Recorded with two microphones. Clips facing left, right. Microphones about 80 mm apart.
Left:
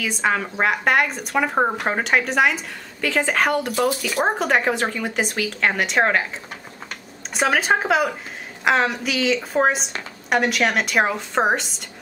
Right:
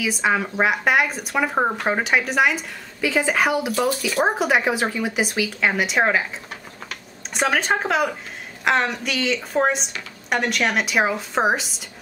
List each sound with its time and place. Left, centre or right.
0.0 s speech: centre
6.9 s computer keyboard: centre
8.6 s speech: centre